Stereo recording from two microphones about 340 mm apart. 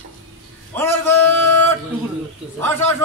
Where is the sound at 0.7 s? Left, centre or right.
Centre.